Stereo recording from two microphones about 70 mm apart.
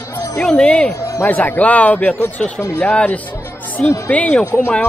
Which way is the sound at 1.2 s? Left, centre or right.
Left.